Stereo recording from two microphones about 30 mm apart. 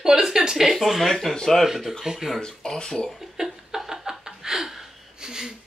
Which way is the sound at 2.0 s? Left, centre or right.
Centre.